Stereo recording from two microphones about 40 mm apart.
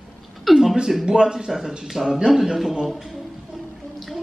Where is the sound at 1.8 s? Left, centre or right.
Centre.